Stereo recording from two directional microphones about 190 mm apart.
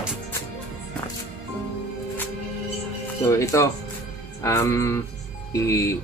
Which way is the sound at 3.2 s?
15° left (ahead or behind).